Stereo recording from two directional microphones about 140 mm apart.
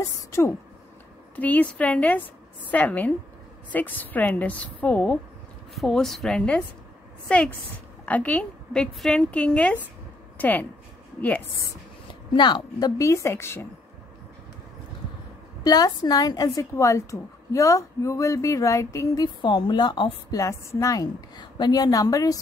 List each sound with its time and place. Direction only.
0.0 s a woman's voice: 20° left (ahead or behind)
12.4 s a woman's voice: 35° left (ahead or behind); by 13.7 s 20° left (ahead or behind)
15.6 s a woman's voice: 30° left (ahead or behind)
19.2 s a woman's voice: 35° left (ahead or behind)